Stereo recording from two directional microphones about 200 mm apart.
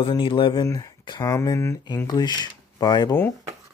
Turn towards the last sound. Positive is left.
turn(degrees=15)  # may be behind; listen again after turning